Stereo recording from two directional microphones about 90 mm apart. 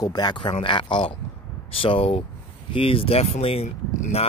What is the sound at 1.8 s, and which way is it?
Speech, 85° left.